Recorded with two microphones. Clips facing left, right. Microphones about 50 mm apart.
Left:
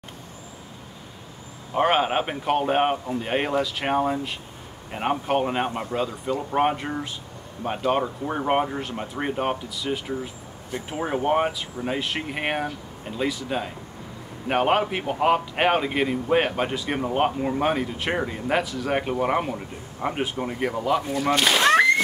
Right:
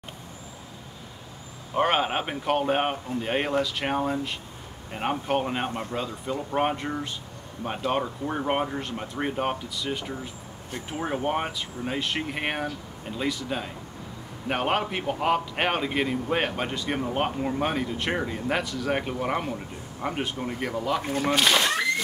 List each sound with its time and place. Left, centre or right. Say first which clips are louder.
1.8 s a man's voice: left 3 dB; centre
21.0 s speech: left 1 dB; right
21.4 s speech: even; centre